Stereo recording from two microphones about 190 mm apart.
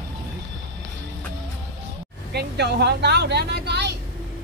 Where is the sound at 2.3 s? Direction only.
60° right (ahead or behind).